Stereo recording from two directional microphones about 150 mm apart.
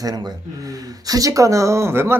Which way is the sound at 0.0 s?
25° right (ahead or behind).